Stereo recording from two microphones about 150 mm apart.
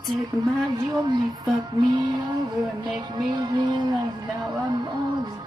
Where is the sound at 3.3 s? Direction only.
30° right (ahead or behind).